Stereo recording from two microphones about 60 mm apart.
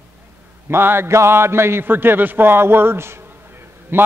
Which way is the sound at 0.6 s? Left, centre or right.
Right.